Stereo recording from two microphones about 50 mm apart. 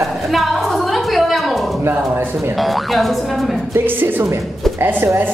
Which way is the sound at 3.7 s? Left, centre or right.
Right.